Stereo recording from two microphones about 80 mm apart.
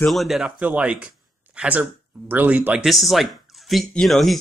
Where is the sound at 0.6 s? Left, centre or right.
Centre.